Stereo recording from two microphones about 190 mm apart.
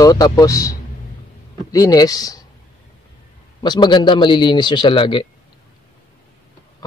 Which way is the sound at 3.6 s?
25° left (ahead or behind).